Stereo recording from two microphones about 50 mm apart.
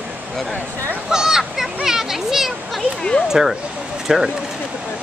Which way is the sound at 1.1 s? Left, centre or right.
Centre.